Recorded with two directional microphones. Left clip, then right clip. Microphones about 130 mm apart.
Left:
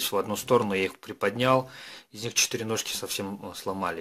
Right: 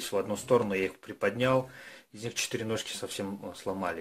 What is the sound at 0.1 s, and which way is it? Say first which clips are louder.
Speech: left 1 dB; 40° left (ahead or behind).